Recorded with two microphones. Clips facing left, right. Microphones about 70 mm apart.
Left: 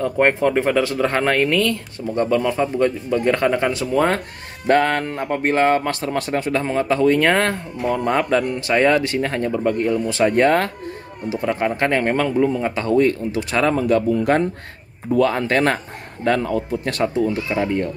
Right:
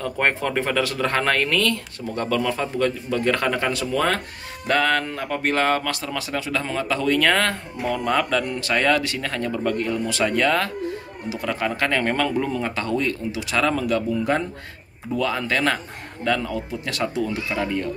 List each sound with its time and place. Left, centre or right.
0.0 s speech: left
13.3 s speech: left
17.0 s speech: left